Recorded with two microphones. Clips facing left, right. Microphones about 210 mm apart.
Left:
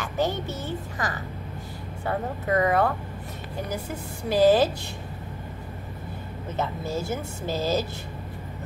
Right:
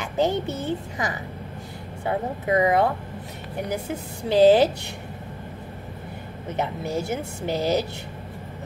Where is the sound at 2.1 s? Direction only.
15° right (ahead or behind).